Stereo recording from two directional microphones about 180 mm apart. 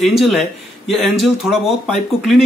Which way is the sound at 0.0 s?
Centre (ahead or behind).